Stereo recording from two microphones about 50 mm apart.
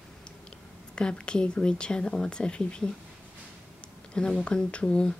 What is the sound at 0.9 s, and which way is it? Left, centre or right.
Speech, centre.